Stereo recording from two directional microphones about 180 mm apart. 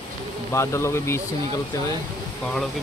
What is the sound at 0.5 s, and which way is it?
Speech, 15° left (ahead or behind).